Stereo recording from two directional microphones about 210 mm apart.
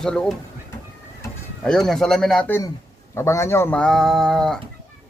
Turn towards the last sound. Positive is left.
turn(degrees=5)  # may be behind; listen again after turning